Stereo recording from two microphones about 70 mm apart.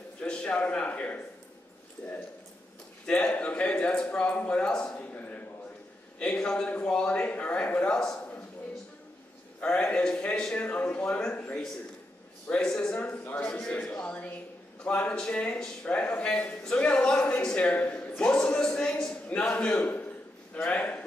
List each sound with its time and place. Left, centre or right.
0.2 s a man's voice: centre
3.1 s a man's voice: centre
9.6 s a man's voice: centre
13.5 s a man's voice: centre